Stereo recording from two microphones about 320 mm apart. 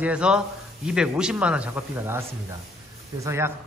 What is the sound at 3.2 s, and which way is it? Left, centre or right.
Speech, centre.